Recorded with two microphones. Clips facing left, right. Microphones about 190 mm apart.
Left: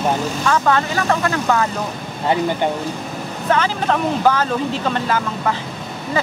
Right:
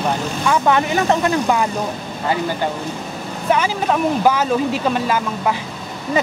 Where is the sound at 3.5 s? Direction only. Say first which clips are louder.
Right 1 dB; 10° right (ahead or behind).